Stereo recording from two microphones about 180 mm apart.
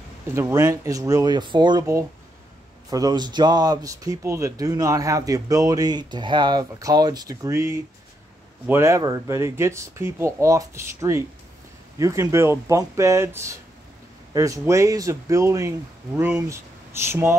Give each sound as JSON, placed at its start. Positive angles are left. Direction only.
{"t": 0.3, "sound": "speech", "side_deg": -15}